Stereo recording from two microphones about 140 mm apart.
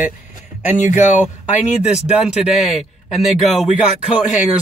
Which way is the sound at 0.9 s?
60° left (ahead or behind).